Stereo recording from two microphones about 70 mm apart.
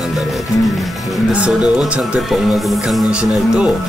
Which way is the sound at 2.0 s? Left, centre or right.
Centre.